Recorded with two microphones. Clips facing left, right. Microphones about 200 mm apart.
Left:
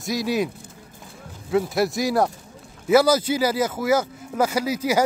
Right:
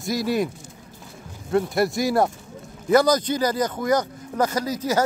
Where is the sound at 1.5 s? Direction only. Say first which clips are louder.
Even; centre (ahead or behind).